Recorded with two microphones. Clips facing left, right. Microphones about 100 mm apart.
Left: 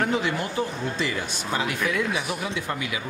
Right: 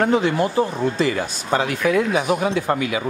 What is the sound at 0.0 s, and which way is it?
Speech, 30° right (ahead or behind).